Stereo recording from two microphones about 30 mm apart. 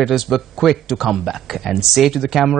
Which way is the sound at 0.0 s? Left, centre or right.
Centre.